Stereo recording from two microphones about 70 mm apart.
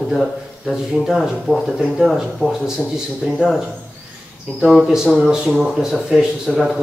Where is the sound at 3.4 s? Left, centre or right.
Centre.